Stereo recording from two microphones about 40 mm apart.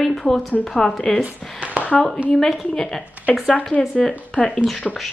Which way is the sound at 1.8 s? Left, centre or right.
Left.